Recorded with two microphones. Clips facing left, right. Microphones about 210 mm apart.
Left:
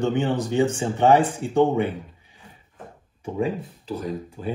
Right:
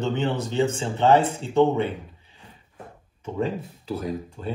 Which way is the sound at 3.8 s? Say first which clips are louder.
Even; centre (ahead or behind).